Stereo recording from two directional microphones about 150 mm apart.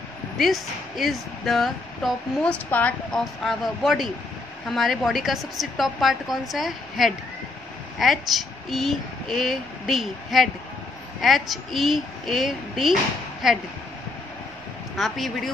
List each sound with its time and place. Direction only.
0.4 s speech: centre (ahead or behind)
15.0 s speech: centre (ahead or behind)